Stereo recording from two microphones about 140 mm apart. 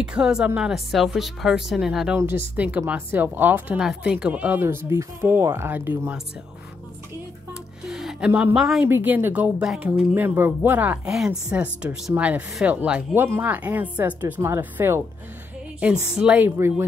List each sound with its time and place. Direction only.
0.0 s speech: 5° right (ahead or behind)
2.1 s speech: 15° right (ahead or behind)
7.8 s music: 5° right (ahead or behind)
8.5 s speech: centre (ahead or behind)
8.8 s speech: 15° right (ahead or behind)
16.1 s speech: 5° right (ahead or behind)